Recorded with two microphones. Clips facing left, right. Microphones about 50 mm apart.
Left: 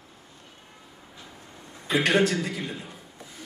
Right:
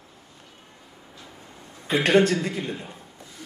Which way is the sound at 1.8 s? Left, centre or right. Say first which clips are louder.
Right 3 dB; right.